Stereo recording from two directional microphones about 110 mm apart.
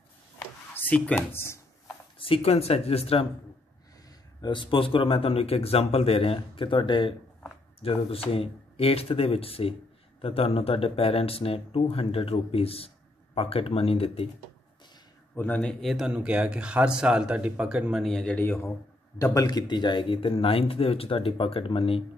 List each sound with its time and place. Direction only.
0.7 s speech: 15° left (ahead or behind)
2.1 s speech: 55° left (ahead or behind)
4.4 s speech: 45° left (ahead or behind)
7.8 s speech: 60° left (ahead or behind)
15.3 s speech: 15° left (ahead or behind)
15.8 s a man's voice: 5° right (ahead or behind)
18.0 s speech: 5° left (ahead or behind)
19.1 s speech: 30° left (ahead or behind); by 22.0 s 60° left (ahead or behind)